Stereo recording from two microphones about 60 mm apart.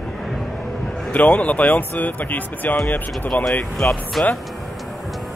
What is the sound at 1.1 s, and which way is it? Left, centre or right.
Speech, left.